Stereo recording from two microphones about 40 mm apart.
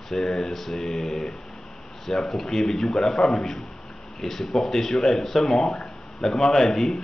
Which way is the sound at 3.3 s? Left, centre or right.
Centre.